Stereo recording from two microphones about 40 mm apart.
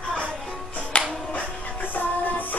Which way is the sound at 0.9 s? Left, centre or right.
Left.